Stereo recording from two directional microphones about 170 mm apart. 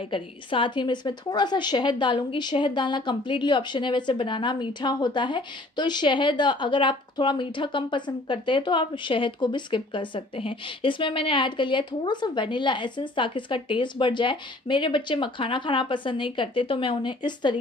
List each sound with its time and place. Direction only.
0.1 s a woman's voice: 30° left (ahead or behind)